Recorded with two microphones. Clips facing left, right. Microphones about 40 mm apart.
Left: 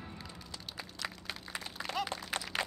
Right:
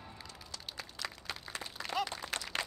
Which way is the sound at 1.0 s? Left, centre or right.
Centre.